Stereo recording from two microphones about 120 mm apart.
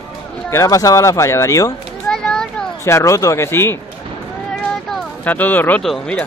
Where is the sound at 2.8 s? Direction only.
25° left (ahead or behind).